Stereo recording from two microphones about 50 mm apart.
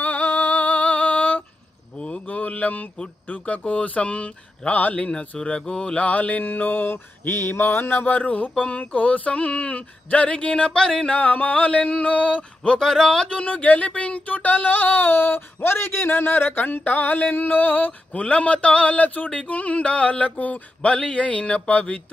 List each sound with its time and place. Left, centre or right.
0.0 s music: left
2.0 s mantra: left
3.3 s speech: left
6.0 s speech: left
11.1 s speech: left
12.8 s speech: centre; by 22.0 s left